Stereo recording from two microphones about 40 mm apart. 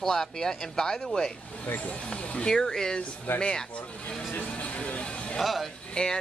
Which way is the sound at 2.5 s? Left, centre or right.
Centre.